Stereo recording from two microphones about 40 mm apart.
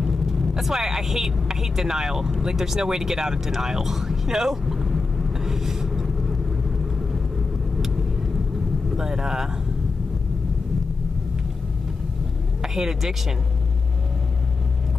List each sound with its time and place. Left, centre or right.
0.3 s speech: centre
8.9 s speech: centre
12.6 s a woman's voice: centre